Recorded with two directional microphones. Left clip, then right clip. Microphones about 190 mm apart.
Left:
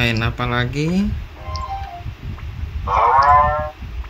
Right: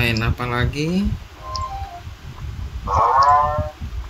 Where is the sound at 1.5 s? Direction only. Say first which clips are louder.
Right 2 dB; 20° left (ahead or behind).